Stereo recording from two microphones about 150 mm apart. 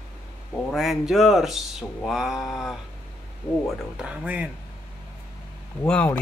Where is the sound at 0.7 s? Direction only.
Centre (ahead or behind).